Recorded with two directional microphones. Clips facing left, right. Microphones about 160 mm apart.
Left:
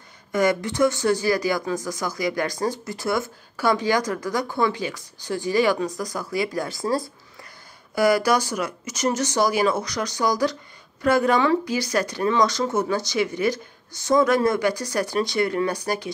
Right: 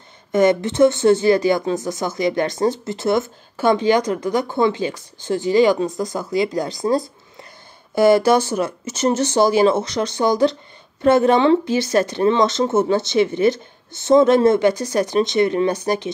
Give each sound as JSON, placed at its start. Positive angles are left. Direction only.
{"t": 0.3, "sound": "speech", "side_deg": -25}